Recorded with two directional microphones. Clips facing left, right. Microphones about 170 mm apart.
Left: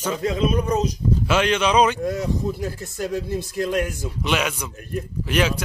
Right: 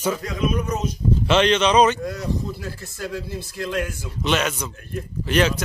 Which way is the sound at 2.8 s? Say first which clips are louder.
Left 4 dB; 45° left (ahead or behind).